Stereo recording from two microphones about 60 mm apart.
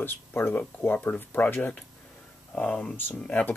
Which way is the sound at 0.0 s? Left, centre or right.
Left.